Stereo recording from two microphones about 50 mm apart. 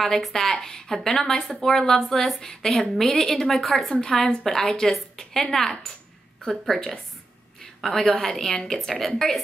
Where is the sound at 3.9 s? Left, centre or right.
Centre.